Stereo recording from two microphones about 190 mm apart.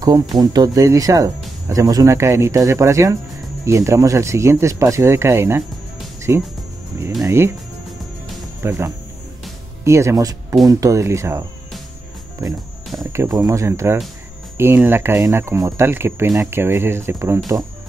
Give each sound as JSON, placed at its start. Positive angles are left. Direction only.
{"t": 0.0, "sound": "speech", "side_deg": -20}
{"t": 8.6, "sound": "speech", "side_deg": -15}
{"t": 13.0, "sound": "speech", "side_deg": -15}